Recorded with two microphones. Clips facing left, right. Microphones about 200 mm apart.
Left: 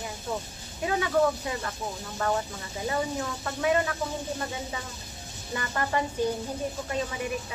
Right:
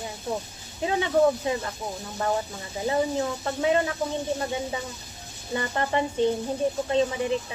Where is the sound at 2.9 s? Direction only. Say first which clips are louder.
Right 5 dB; 25° right (ahead or behind).